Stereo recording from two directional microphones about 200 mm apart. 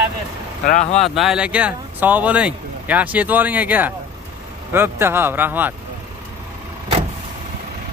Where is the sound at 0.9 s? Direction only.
Centre (ahead or behind).